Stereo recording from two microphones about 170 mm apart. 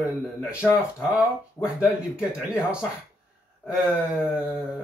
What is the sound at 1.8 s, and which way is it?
Speech, 5° right (ahead or behind).